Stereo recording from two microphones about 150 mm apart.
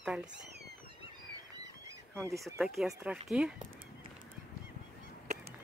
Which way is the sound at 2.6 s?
Centre (ahead or behind).